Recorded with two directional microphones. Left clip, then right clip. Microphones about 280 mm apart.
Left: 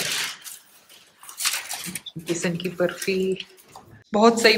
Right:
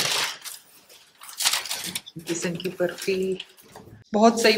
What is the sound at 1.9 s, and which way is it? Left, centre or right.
A woman's voice, centre.